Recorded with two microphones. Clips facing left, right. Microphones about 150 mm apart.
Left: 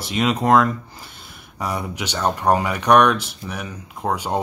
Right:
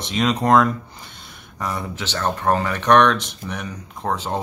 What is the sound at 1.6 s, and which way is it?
Speech, 15° left (ahead or behind).